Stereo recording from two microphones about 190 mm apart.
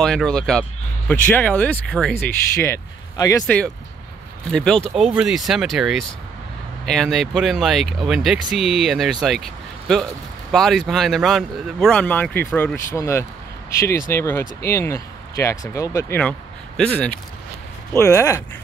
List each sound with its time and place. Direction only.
0.0 s speech: 5° left (ahead or behind)
3.4 s speech: 5° left (ahead or behind)
10.5 s speech: centre (ahead or behind)